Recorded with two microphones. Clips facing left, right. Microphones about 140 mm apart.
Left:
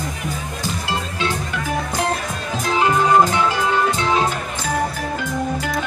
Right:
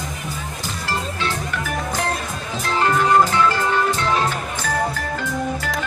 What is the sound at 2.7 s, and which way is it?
Music, 15° left (ahead or behind).